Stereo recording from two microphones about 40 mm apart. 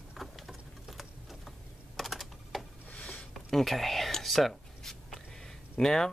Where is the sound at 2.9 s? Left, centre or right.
Left.